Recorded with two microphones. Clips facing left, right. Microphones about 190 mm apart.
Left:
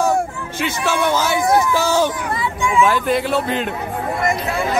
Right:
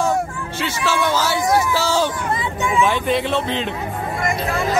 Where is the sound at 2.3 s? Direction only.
20° right (ahead or behind).